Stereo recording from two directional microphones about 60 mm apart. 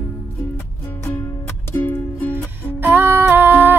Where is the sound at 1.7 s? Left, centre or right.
Left.